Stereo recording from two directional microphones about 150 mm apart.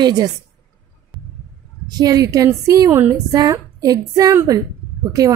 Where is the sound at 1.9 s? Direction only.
25° right (ahead or behind).